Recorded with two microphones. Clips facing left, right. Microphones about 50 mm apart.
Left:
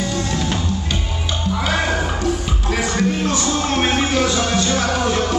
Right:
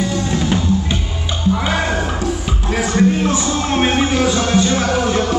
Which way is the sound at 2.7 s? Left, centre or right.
Centre.